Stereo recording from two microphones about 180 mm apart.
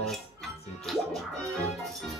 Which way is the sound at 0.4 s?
Centre (ahead or behind).